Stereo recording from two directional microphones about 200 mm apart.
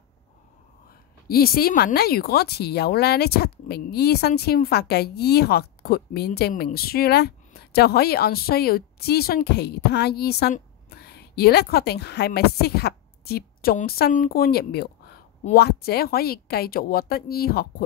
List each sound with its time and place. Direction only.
1.3 s speech: 50° left (ahead or behind)